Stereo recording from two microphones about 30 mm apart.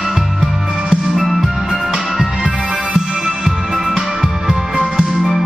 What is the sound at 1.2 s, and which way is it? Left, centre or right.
Music, centre.